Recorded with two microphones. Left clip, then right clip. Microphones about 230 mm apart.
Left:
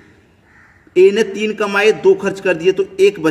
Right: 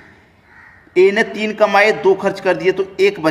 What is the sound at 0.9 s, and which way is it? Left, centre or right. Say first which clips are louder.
A man's voice: left 1 dB; left.